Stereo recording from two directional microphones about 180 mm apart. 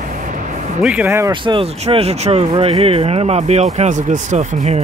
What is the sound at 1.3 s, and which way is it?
Speech, 25° right (ahead or behind).